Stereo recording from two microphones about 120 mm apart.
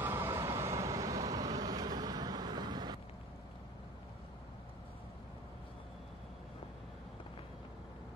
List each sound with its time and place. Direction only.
0.0 s vehicle: 20° right (ahead or behind); by 3.0 s 35° right (ahead or behind)